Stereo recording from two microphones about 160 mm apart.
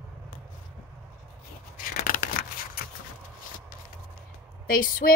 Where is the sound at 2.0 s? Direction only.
60° left (ahead or behind).